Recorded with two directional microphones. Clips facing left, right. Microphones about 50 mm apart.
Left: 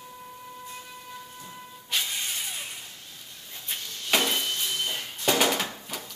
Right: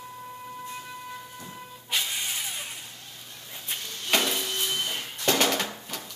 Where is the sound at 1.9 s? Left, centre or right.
Centre.